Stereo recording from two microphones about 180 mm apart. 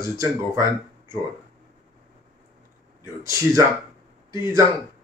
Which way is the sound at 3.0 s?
15° right (ahead or behind).